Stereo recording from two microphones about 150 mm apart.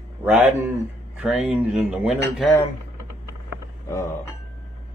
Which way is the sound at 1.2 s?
5° right (ahead or behind).